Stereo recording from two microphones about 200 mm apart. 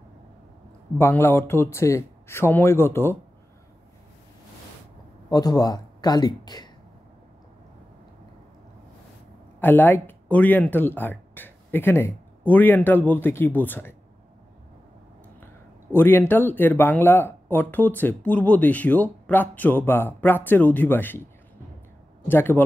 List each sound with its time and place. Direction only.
0.9 s speech: 10° left (ahead or behind)
5.3 s speech: 20° left (ahead or behind)
9.6 s speech: 10° left (ahead or behind)
15.4 s speech: 10° left (ahead or behind)
22.3 s speech: 10° left (ahead or behind)